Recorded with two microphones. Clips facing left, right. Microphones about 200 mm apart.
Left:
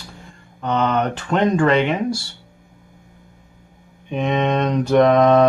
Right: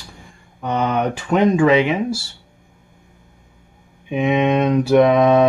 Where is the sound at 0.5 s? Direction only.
10° right (ahead or behind).